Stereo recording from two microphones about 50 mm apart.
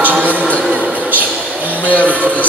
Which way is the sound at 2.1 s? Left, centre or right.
Right.